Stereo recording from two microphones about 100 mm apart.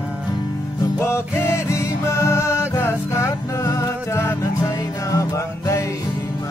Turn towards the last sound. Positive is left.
turn(degrees=30)  # may be behind; listen again after turning